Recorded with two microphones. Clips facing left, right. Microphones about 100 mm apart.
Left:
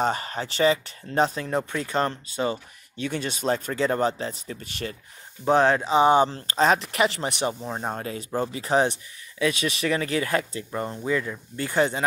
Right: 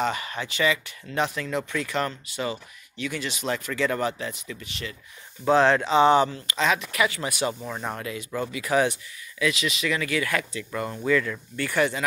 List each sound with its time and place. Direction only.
0.0 s speech: 40° left (ahead or behind)
5.9 s speech: 15° left (ahead or behind)
6.3 s speech: 40° left (ahead or behind)